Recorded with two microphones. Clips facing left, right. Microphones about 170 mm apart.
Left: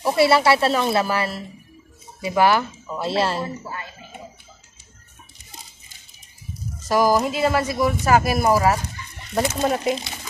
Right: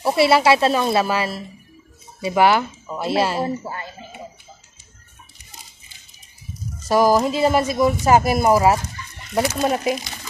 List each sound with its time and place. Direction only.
0.0 s speech: 15° right (ahead or behind)
3.4 s speech: 35° right (ahead or behind)
6.9 s speech: 20° right (ahead or behind)